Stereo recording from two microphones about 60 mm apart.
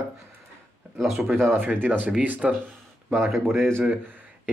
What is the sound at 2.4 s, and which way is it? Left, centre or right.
Speech, centre.